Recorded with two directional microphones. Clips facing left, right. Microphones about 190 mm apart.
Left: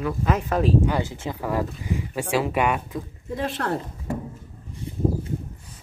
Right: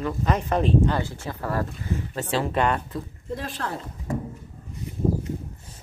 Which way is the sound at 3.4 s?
55° left (ahead or behind).